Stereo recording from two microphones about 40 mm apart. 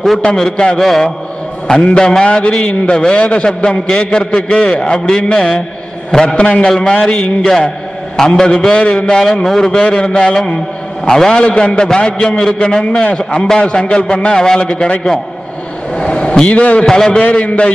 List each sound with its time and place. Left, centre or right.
0.2 s a man's voice: centre
1.9 s a man's voice: left
4.9 s a man's voice: centre
9.2 s a man's voice: centre
16.0 s vehicle: left
16.4 s a man's voice: left
16.8 s a man's voice: centre
17.1 s a man's voice: left